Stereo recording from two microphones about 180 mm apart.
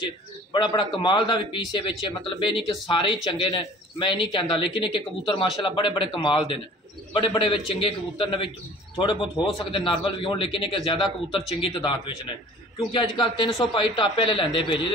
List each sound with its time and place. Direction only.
0.5 s a man's voice: 25° left (ahead or behind)